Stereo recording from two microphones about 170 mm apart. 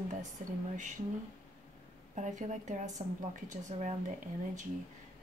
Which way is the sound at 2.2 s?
45° right (ahead or behind).